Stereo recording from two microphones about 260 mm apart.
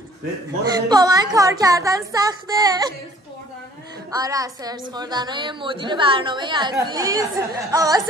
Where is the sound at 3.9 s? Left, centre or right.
Centre.